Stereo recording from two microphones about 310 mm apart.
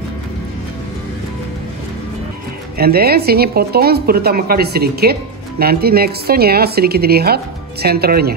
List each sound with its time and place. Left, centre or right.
2.8 s a woman's voice: right